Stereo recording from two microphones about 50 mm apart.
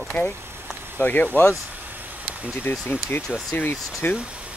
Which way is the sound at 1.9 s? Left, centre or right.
Right.